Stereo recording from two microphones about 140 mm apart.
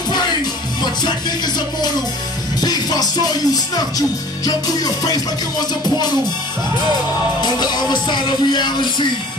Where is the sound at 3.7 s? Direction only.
25° left (ahead or behind).